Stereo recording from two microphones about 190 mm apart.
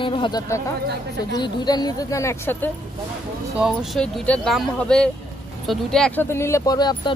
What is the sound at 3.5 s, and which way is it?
Speech, centre (ahead or behind).